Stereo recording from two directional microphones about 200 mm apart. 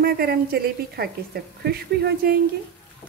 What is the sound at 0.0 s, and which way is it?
Speech, 50° right (ahead or behind).